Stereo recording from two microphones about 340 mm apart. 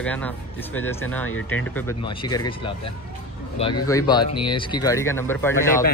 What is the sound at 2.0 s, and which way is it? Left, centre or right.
Speech, centre.